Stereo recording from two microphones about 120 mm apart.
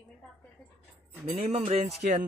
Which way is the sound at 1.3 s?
50° right (ahead or behind).